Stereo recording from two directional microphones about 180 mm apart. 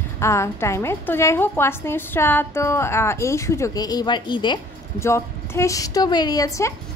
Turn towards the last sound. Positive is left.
turn(degrees=20)  # may be behind; listen again after turning